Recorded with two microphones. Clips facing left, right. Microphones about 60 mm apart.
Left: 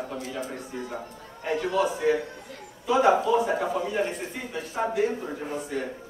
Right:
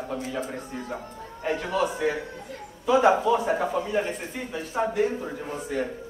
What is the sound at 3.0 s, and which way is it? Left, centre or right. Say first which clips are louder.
Speech: left 1 dB; right.